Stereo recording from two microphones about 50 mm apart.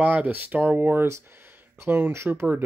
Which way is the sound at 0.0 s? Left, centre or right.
Right.